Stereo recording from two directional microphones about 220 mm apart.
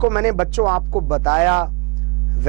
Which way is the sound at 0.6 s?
25° right (ahead or behind).